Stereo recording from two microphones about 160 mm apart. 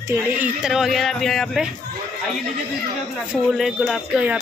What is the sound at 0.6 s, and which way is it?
Speech, centre (ahead or behind).